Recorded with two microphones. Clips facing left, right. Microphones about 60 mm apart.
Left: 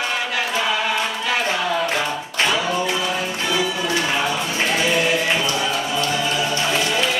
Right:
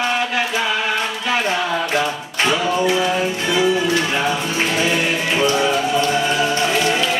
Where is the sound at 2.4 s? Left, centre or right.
Right.